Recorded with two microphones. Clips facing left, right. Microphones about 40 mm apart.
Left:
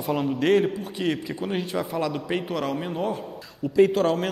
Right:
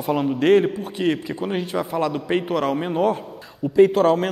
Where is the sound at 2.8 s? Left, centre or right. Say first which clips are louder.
Right 7 dB; centre.